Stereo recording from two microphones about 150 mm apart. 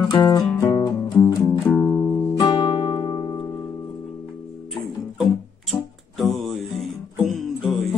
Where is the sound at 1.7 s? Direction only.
15° left (ahead or behind).